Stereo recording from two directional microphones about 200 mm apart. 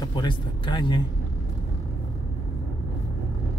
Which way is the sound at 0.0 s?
20° left (ahead or behind).